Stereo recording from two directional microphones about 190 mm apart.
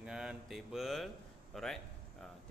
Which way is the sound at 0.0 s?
5° right (ahead or behind).